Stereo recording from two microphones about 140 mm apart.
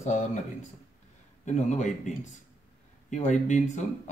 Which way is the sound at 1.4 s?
60° left (ahead or behind).